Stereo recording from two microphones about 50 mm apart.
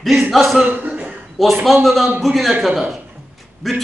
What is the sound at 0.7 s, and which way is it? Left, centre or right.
Cough, right.